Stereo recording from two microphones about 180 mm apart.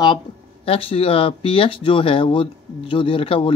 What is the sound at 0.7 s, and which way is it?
Speech, 30° left (ahead or behind).